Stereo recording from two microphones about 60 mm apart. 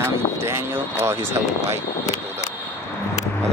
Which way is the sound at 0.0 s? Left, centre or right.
Right.